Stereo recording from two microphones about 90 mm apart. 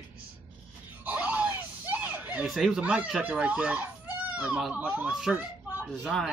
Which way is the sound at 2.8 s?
15° right (ahead or behind).